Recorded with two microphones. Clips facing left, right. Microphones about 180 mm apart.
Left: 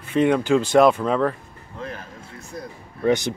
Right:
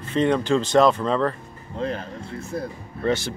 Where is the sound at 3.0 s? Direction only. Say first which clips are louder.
Left 3 dB; 15° left (ahead or behind).